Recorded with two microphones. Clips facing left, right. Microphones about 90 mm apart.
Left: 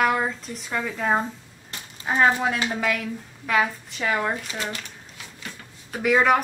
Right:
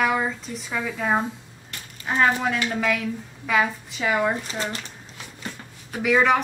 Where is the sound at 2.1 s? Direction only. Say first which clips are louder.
Left 1 dB; 15° left (ahead or behind).